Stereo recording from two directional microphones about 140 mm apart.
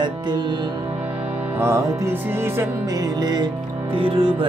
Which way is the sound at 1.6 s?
20° right (ahead or behind).